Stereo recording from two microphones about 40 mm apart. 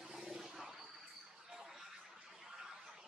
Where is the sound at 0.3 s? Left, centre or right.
Centre.